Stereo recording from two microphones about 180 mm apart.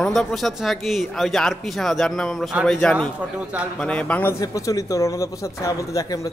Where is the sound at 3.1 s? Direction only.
5° right (ahead or behind).